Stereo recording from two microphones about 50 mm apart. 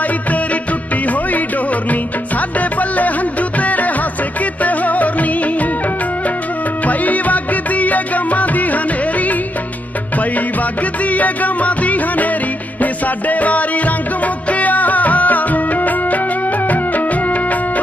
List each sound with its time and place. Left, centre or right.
1.0 s music: left
4.6 s music of bollywood: left
6.8 s music: left